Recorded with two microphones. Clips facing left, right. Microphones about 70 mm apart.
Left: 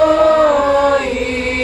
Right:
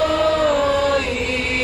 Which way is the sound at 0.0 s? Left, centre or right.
Left.